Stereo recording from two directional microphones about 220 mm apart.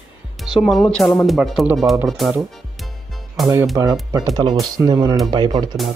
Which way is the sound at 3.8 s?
15° right (ahead or behind).